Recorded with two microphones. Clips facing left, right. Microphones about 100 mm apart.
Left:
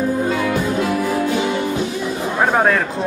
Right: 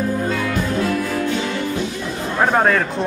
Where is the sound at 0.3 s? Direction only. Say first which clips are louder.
Left 2 dB; 15° left (ahead or behind).